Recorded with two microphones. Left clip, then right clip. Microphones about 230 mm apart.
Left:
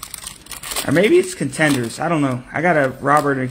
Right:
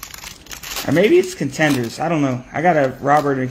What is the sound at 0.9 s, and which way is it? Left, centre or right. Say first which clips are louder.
Speech: even; centre.